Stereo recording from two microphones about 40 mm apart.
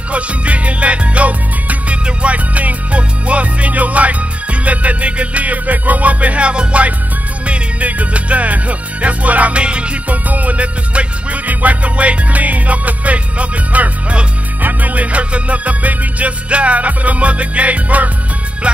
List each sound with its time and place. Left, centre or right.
0.1 s music: right